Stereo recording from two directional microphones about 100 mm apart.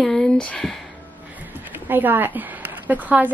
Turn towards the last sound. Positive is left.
turn(degrees=-15)  # may be behind; listen again after turning